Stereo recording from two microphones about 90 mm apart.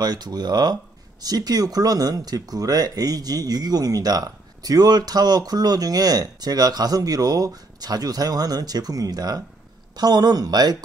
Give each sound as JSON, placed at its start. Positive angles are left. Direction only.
{"t": 0.0, "sound": "speech", "side_deg": -50}